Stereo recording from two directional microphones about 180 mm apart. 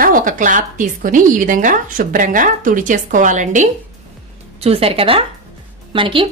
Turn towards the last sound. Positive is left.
turn(degrees=-30)  # may be behind; listen again after turning